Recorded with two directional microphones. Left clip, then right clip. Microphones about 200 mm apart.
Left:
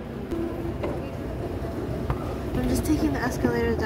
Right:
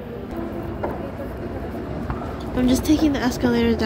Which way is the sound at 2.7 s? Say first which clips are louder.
Right 6 dB; 15° right (ahead or behind).